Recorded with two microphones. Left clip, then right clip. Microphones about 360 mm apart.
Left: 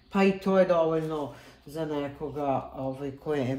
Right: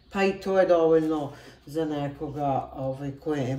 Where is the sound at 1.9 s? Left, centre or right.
Centre.